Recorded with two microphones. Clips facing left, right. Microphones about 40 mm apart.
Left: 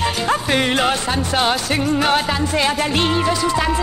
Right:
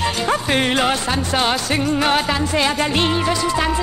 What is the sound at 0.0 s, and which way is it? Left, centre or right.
Music, centre.